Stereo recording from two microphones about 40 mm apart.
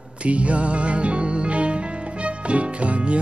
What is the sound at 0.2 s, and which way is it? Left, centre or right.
Music, right.